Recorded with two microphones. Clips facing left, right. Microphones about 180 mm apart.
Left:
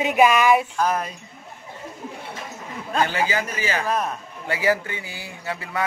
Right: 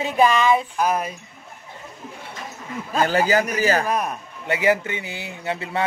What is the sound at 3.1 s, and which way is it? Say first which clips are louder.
Speech: right 5 dB; 45° right (ahead or behind).